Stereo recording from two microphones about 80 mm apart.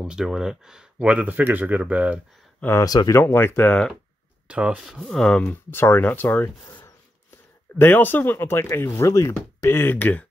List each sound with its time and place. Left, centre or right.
0.0 s speech: centre
2.8 s speech: left
3.2 s speech: left
4.5 s speech: centre
4.8 s speech: centre
5.4 s speech: left
7.8 s speech: left